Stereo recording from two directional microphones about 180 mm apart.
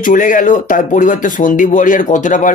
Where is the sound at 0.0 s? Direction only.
45° left (ahead or behind).